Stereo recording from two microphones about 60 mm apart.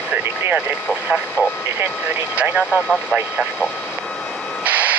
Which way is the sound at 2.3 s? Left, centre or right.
Right.